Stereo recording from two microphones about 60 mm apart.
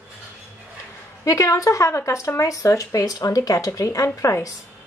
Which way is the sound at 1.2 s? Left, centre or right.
Left.